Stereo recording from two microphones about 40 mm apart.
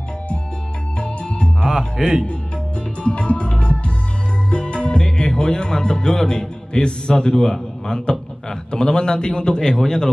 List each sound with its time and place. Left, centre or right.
0.9 s music: left
1.7 s speech: centre
3.0 s music: left
5.0 s a man's voice: centre